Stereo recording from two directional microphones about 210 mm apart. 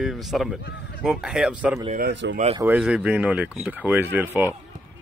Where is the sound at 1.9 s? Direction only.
45° right (ahead or behind).